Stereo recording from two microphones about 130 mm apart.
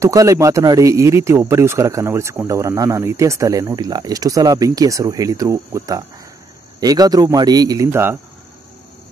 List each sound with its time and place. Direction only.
0.0 s speech: 25° right (ahead or behind)